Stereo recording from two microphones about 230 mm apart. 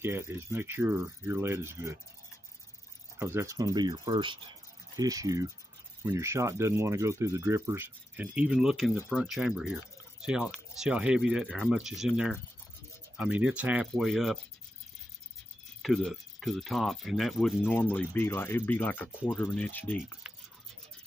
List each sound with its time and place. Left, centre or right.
0.0 s speech: centre
3.2 s speech: centre
15.8 s speech: centre
20.2 s toothbrush: centre